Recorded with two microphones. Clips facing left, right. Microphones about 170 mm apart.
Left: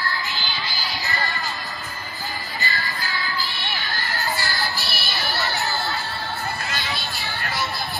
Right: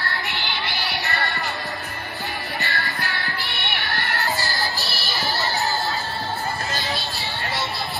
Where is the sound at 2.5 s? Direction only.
65° right (ahead or behind).